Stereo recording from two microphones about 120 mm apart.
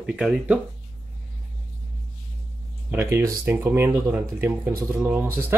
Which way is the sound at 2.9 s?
20° right (ahead or behind).